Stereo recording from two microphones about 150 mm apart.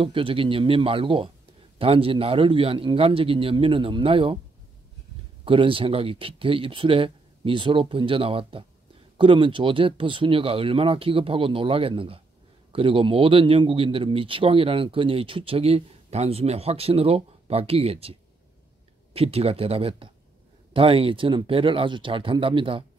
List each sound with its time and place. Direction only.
0.0 s a man's voice: 35° right (ahead or behind)
5.4 s a man's voice: 35° right (ahead or behind)
19.1 s a man's voice: 40° right (ahead or behind)